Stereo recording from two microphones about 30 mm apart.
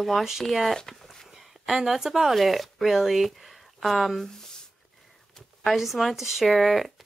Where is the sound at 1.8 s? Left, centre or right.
Centre.